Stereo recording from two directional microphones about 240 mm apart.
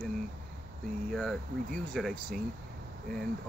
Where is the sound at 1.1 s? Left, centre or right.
Centre.